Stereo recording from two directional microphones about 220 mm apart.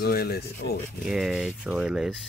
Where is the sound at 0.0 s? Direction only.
45° left (ahead or behind).